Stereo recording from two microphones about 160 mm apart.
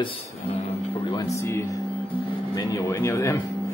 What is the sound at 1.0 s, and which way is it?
Speech, 25° left (ahead or behind).